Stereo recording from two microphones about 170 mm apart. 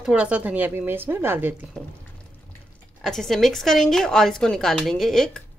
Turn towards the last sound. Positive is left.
turn(degrees=0)  # may be behind; listen again after turning